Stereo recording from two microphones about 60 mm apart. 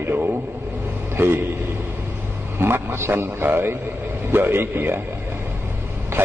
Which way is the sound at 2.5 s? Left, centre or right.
Right.